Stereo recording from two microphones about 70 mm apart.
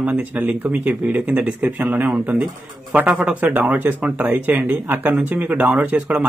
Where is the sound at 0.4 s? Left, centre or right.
Right.